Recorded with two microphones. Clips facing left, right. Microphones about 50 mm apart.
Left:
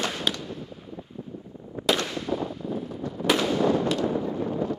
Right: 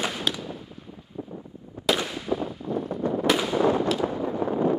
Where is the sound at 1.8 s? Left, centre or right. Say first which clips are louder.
Even; centre.